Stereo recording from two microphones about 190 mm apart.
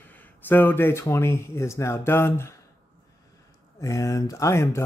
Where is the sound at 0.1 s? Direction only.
10° left (ahead or behind).